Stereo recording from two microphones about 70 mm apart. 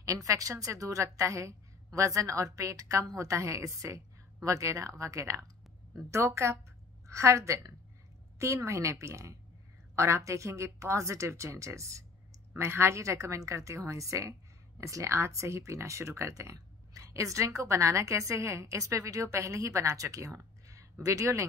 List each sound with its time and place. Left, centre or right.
0.0 s a woman's voice: right